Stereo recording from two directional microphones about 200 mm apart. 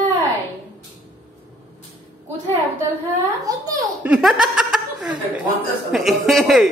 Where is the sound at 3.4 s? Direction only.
15° right (ahead or behind).